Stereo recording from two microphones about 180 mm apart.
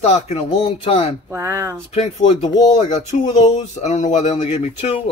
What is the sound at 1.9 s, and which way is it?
Speech, 35° left (ahead or behind).